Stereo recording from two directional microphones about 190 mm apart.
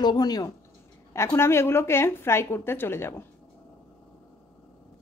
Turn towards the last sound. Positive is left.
turn(degrees=10)  # may be behind; listen again after turning